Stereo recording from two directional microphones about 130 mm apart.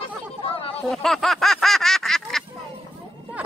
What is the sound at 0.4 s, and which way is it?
Chatter, 45° left (ahead or behind).